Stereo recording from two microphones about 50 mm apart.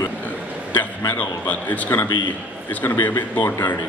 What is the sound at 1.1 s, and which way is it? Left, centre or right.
Speech, left.